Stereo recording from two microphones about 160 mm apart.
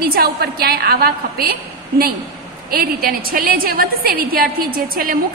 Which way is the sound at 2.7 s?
70° right (ahead or behind).